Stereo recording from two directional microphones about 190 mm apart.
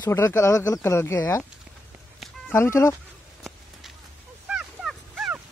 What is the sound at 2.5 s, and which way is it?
Speech, 15° left (ahead or behind).